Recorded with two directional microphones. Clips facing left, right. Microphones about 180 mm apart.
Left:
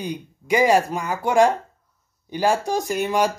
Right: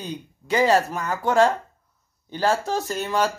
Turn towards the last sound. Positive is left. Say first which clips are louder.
# left 3 dB
turn(degrees=15)  # may be behind; listen again after turning